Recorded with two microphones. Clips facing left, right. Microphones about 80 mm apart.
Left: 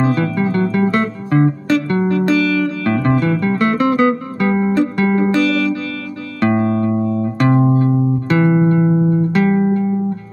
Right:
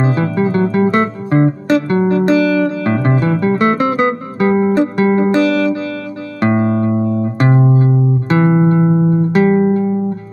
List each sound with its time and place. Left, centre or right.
0.0 s music: right